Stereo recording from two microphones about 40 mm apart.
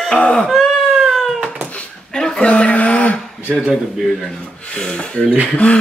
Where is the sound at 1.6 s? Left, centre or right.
Right.